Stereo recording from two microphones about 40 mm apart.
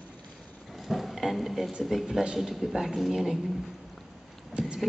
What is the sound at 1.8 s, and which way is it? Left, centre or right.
Speech, centre.